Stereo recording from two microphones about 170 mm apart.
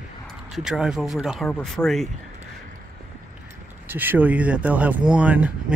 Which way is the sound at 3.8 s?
10° right (ahead or behind).